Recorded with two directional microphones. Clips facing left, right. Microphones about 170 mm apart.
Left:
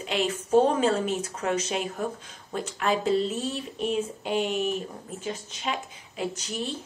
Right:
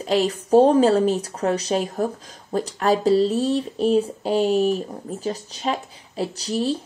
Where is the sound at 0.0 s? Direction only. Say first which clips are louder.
Right 7 dB; 35° right (ahead or behind).